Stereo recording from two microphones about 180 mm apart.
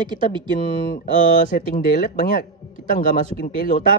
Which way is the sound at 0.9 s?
50° left (ahead or behind).